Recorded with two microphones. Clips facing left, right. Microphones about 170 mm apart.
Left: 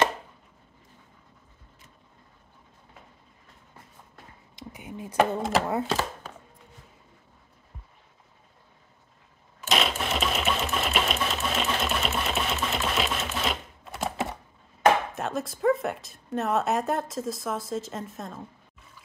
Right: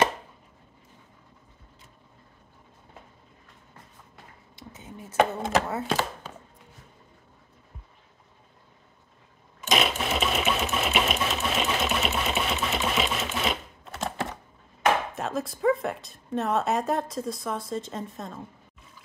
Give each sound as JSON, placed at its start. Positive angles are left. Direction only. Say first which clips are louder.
{"t": 4.6, "sound": "speech", "louder": "left 4 dB", "side_deg": 15}
{"t": 9.7, "sound": "sewing machine", "louder": "right 1 dB", "side_deg": 0}
{"t": 15.1, "sound": "a woman's voice", "louder": "even", "side_deg": 0}